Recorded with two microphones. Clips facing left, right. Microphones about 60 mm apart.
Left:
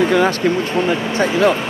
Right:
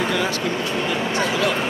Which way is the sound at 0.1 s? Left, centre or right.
Left.